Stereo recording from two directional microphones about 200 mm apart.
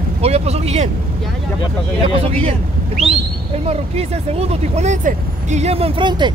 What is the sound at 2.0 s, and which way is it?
Speech, 30° right (ahead or behind).